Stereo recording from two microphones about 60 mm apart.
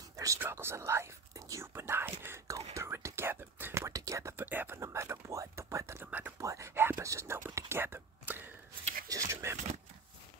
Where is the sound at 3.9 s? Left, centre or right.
Right.